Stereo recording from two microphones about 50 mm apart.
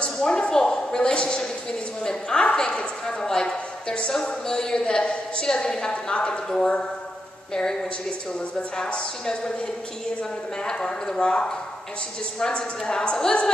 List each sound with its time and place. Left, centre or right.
0.0 s a sound: centre
4.1 s a woman's voice: centre
10.6 s a woman's voice: centre